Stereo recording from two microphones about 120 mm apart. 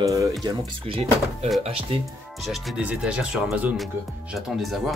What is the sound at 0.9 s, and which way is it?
Speech, 55° right (ahead or behind).